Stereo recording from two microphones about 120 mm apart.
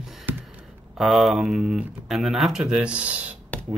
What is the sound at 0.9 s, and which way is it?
Speech, centre (ahead or behind).